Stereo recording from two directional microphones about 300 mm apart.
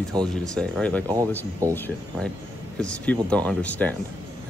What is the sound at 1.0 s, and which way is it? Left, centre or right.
Speech, centre.